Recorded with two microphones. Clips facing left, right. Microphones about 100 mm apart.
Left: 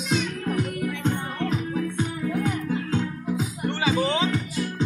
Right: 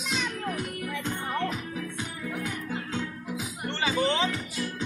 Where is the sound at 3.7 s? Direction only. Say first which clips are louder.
Left 2 dB; 10° left (ahead or behind).